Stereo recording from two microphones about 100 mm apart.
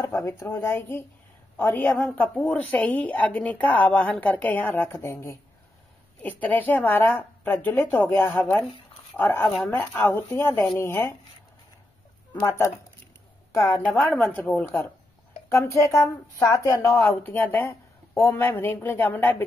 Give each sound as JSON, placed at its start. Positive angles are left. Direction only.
{"t": 0.0, "sound": "a woman's voice", "side_deg": 25}
{"t": 2.1, "sound": "speech", "side_deg": 10}
{"t": 6.2, "sound": "a woman's voice", "side_deg": 15}
{"t": 12.4, "sound": "a woman's voice", "side_deg": 25}
{"t": 13.8, "sound": "a woman's voice", "side_deg": 15}